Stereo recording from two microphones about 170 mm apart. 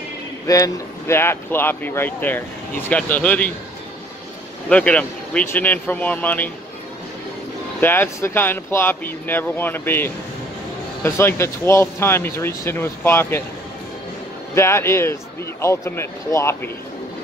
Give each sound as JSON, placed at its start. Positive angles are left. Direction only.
{"t": 0.5, "sound": "speech", "side_deg": 15}
{"t": 4.6, "sound": "speech", "side_deg": 5}
{"t": 7.8, "sound": "speech", "side_deg": 10}
{"t": 14.5, "sound": "speech", "side_deg": 15}